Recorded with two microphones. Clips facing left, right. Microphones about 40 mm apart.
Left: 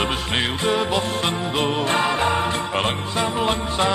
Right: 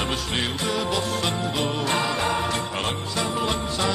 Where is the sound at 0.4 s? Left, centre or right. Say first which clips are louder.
Left 6 dB; left.